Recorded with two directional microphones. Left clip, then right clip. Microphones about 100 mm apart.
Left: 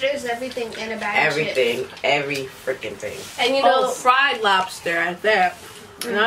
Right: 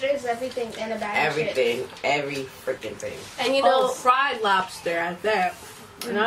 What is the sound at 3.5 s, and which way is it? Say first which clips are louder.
Speech: left 2 dB; 10° right (ahead or behind).